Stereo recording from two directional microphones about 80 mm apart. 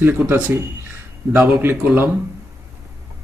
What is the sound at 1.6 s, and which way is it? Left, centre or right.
Speech, right.